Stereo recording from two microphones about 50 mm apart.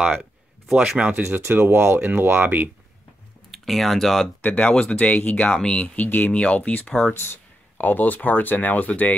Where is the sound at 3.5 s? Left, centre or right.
Centre.